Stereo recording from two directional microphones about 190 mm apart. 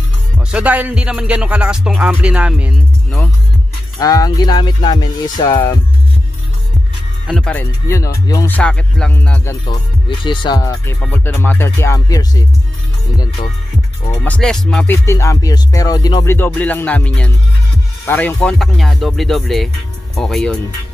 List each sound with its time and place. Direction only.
0.5 s music: 5° right (ahead or behind)
4.0 s speech: 20° left (ahead or behind)
7.2 s music: 5° left (ahead or behind)
8.5 s music: 5° left (ahead or behind)
10.0 s speech: 25° left (ahead or behind)
11.0 s music: 10° left (ahead or behind)
14.1 s music: 10° left (ahead or behind)
16.3 s music: 10° left (ahead or behind)